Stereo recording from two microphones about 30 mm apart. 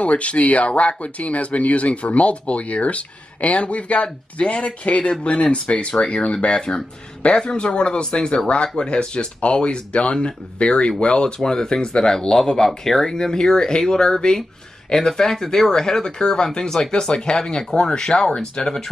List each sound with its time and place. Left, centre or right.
0.0 s speech: left
11.3 s speech: left